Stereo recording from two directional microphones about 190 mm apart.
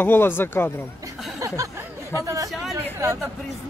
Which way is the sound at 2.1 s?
20° right (ahead or behind).